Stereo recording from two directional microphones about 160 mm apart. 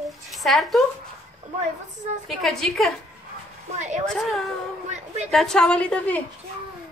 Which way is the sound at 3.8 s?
50° right (ahead or behind).